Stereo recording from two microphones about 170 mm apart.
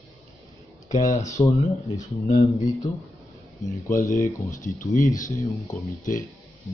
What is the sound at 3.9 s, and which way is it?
Speech, 50° left (ahead or behind).